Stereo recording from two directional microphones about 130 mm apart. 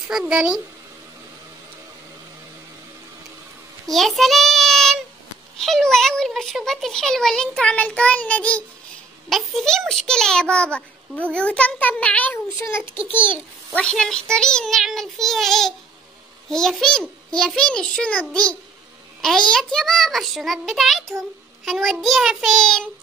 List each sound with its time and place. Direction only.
0.1 s speech: 5° right (ahead or behind)
3.9 s child singing: centre (ahead or behind)
5.6 s a child's voice: 5° left (ahead or behind)